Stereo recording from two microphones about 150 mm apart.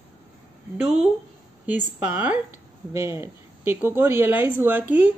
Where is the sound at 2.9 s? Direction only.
20° right (ahead or behind).